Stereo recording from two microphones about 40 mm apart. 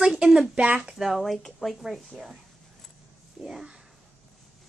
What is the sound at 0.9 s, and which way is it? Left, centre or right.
A woman's voice, centre.